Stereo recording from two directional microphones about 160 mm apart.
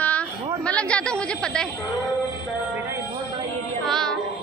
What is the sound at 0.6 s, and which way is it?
A woman's voice, 5° left (ahead or behind).